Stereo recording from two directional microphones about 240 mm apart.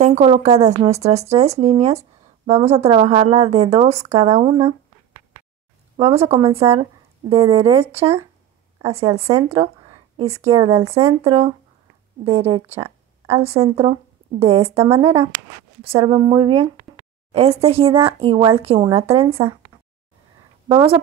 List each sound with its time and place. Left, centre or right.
0.0 s speech: right
5.9 s speech: right
20.6 s speech: right